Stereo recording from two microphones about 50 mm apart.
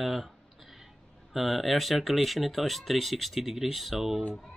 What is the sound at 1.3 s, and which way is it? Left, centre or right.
Speech, centre.